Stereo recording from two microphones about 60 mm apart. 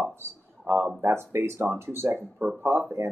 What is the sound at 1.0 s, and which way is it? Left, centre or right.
Speech, right.